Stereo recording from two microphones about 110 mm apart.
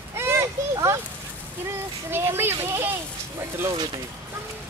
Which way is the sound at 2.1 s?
20° right (ahead or behind).